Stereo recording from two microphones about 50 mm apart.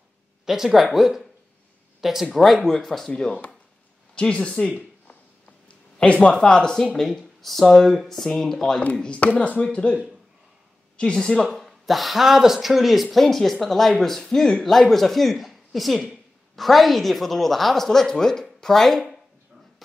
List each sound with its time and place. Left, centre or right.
0.5 s speech: centre
2.0 s a sound: centre
2.3 s speech: centre
4.1 s speech: left
7.0 s speech: centre
9.2 s speech: left
11.1 s speech: centre
11.5 s speech: centre